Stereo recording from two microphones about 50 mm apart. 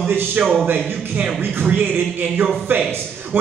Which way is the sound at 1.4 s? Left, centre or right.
Right.